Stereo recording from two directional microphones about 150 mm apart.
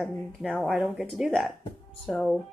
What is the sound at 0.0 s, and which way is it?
Speech, centre (ahead or behind).